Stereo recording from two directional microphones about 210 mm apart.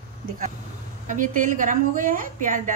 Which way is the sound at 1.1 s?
40° right (ahead or behind).